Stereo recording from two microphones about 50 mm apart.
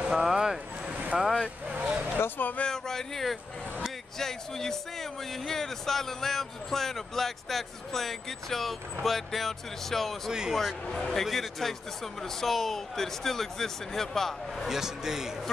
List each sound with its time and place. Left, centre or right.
0.1 s a sound: centre
1.1 s speech: centre
1.7 s vehicle: right
2.1 s speech: left
2.6 s speech: centre
14.7 s a man's voice: centre